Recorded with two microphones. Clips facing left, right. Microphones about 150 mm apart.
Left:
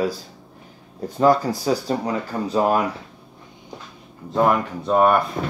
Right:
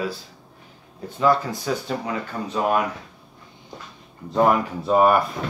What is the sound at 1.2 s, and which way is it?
Speech, 40° left (ahead or behind).